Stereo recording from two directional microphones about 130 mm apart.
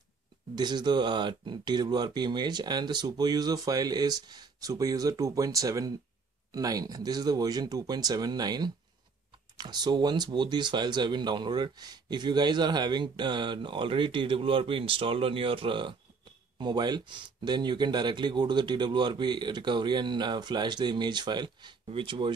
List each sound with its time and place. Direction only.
0.6 s speech: 35° right (ahead or behind)